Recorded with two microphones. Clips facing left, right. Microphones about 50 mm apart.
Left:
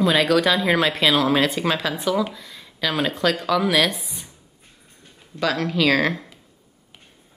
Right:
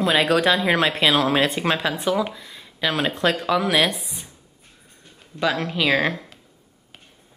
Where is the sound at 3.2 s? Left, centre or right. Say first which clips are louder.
Even; right.